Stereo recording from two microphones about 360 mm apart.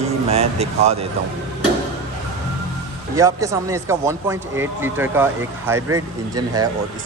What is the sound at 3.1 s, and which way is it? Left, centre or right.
Speech, centre.